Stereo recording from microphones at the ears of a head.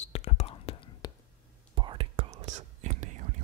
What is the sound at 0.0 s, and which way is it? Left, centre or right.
Whispering, left.